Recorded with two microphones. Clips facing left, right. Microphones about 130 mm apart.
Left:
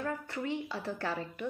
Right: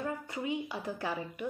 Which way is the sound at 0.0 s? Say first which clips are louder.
Even; 15° right (ahead or behind).